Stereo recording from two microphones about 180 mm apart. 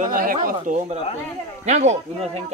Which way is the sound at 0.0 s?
50° right (ahead or behind).